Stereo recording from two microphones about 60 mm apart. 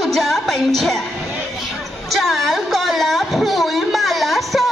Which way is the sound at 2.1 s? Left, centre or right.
Centre.